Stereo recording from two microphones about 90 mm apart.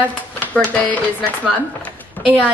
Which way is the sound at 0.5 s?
15° left (ahead or behind).